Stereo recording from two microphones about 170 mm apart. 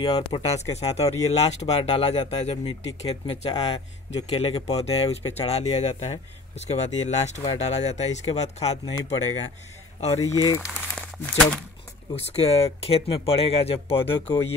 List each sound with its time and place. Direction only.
0.0 s speech: 35° left (ahead or behind)
10.3 s speech: 20° left (ahead or behind)
10.7 s speech: centre (ahead or behind)
12.3 s speech: 35° left (ahead or behind)